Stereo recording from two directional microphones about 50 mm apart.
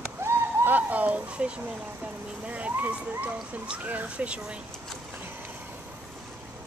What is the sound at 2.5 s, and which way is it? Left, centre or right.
Speech, right.